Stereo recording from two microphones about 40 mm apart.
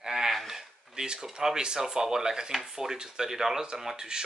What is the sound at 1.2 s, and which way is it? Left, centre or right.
Speech, centre.